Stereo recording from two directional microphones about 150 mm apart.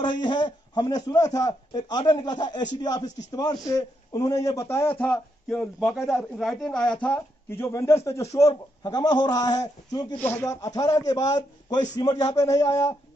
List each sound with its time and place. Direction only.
0.0 s a man's voice: 30° left (ahead or behind)
4.9 s a man's voice: 5° left (ahead or behind)
7.4 s a man's voice: 15° left (ahead or behind)
10.1 s a man's voice: 15° left (ahead or behind)